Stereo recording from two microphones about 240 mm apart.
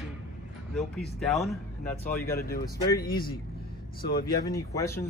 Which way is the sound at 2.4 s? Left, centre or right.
Left.